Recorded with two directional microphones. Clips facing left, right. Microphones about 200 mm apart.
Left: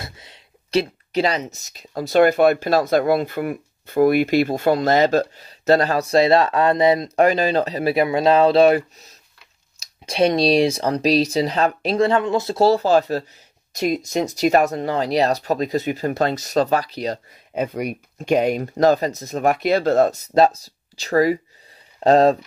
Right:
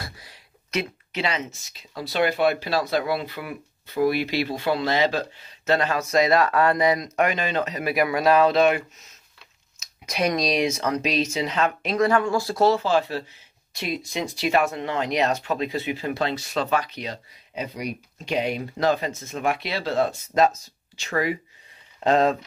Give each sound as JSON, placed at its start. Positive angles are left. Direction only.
{"t": 0.0, "sound": "speech", "side_deg": 25}